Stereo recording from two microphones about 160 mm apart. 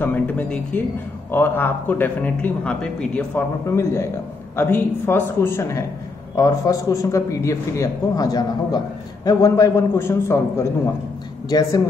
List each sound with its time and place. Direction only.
0.0 s a man's voice: 10° left (ahead or behind)